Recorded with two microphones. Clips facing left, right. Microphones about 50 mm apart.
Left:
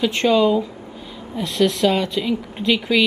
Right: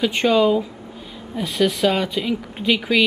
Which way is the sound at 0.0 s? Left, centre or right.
Centre.